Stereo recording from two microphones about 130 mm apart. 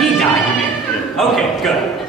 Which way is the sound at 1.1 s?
Centre (ahead or behind).